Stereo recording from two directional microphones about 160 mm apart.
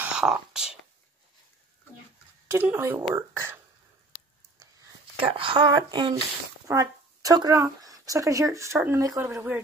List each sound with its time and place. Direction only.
0.0 s a sound: 5° right (ahead or behind)
2.4 s speech: 15° right (ahead or behind)
5.1 s speech: 35° right (ahead or behind); by 9.6 s 15° right (ahead or behind)